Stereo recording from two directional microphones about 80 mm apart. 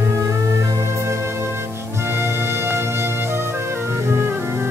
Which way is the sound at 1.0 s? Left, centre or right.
Right.